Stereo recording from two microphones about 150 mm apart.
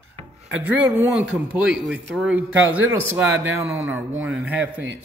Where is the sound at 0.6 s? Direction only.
10° right (ahead or behind).